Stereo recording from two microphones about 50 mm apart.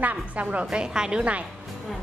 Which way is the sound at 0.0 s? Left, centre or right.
Right.